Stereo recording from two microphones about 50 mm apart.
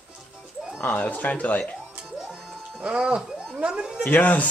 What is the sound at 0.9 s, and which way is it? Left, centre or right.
Speech, left.